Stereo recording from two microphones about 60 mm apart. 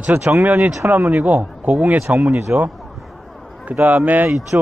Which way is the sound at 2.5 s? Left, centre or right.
Right.